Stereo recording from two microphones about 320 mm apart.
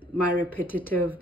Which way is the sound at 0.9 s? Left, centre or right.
Centre.